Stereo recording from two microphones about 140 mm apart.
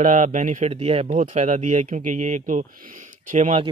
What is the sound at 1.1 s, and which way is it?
Speech, 55° right (ahead or behind).